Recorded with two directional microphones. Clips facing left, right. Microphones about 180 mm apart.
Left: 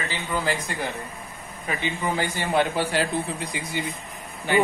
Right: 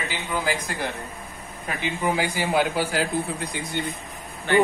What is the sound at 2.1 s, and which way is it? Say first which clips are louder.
Speech: right 3 dB; 15° right (ahead or behind).